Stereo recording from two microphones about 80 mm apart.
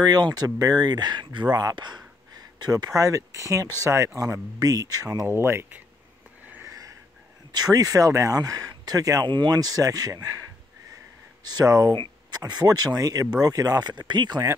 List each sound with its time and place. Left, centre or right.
0.0 s speech: right
1.5 s speech: right
4.6 s speech: right
5.2 s speech: right
6.7 s a sound: right
7.5 s speech: right
11.4 s speech: right
11.9 s speech: right